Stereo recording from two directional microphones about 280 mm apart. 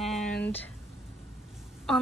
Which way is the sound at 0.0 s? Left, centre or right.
Centre.